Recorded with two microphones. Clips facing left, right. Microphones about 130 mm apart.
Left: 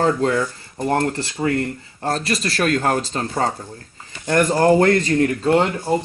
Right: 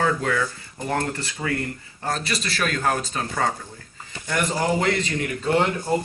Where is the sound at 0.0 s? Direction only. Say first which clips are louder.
Left 5 dB; 30° left (ahead or behind).